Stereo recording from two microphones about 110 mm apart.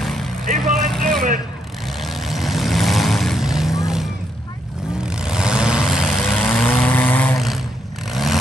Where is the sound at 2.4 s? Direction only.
Centre (ahead or behind).